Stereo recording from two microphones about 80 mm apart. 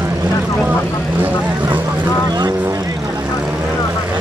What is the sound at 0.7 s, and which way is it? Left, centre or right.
Vehicle, right.